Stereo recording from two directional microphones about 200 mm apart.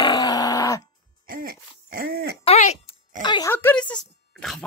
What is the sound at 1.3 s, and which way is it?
Throat clearing, 45° right (ahead or behind).